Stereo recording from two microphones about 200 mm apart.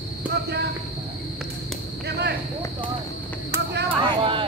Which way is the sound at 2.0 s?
55° right (ahead or behind).